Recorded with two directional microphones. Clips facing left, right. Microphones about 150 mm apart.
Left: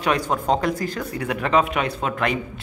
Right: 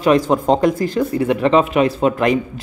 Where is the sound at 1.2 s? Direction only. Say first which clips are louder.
Right 5 dB; 30° right (ahead or behind).